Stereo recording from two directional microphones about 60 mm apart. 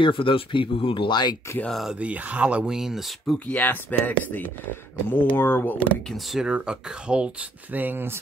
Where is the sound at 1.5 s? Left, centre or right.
Left.